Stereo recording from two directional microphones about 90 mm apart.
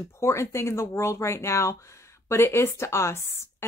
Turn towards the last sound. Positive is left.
turn(degrees=30)  # may be behind; listen again after turning